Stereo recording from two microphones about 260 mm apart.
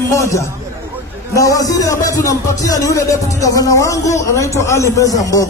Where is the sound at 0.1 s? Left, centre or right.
Centre.